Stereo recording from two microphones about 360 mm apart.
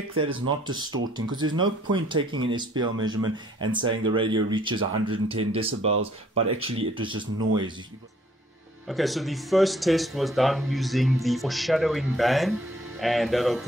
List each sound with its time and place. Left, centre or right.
0.1 s speech: right
1.1 s speech: centre
7.0 s speech: centre
8.8 s speech: centre